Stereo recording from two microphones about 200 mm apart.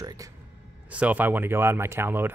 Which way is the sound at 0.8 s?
5° right (ahead or behind).